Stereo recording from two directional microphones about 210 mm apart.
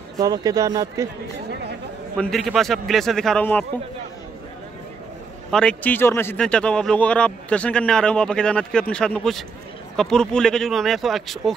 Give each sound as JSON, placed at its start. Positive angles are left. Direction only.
{"t": 0.2, "sound": "speech", "side_deg": -15}
{"t": 1.5, "sound": "speech", "side_deg": -50}
{"t": 2.1, "sound": "a man's voice", "side_deg": 0}
{"t": 5.5, "sound": "a man's voice", "side_deg": 5}